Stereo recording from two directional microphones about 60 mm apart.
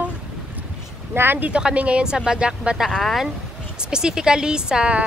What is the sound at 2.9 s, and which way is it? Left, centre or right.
Speech, centre.